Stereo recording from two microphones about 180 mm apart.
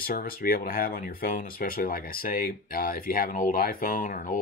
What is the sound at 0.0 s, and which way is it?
Speech, 55° left (ahead or behind).